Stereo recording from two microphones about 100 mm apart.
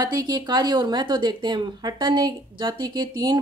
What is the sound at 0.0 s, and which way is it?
Speech, 40° right (ahead or behind).